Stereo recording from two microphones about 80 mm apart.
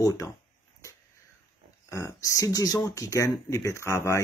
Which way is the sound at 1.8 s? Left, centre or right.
Left.